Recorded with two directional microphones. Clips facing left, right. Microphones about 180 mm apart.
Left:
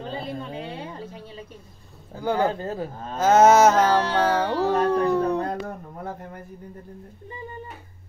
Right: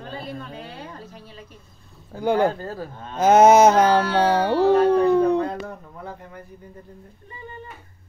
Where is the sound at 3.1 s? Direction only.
15° right (ahead or behind).